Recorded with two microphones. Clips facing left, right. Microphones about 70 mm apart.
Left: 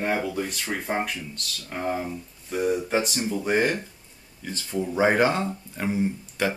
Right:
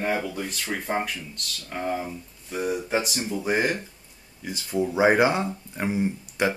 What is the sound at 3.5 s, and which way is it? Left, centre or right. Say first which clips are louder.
Speech: left 2 dB; centre.